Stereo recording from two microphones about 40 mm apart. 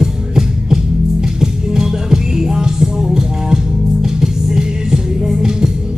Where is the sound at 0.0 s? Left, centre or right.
Centre.